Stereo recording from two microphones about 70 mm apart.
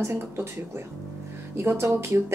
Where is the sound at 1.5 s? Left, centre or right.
Right.